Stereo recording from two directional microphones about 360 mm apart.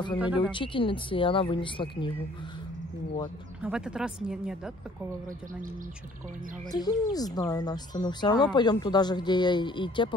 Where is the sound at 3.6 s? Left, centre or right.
Centre.